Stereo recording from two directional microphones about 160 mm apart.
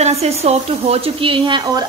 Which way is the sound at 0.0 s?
40° right (ahead or behind).